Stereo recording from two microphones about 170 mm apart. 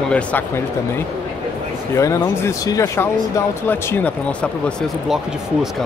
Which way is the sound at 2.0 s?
20° left (ahead or behind).